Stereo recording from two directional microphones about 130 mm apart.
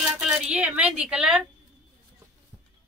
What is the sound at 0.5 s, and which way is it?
A woman's voice, 10° right (ahead or behind).